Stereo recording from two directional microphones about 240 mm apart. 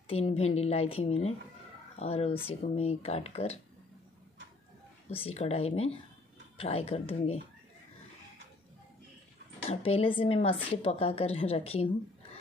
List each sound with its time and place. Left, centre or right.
0.1 s a woman's voice: left
5.1 s a woman's voice: left
9.7 s a woman's voice: left